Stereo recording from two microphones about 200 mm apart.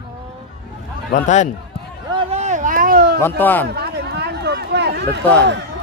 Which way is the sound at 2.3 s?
35° right (ahead or behind).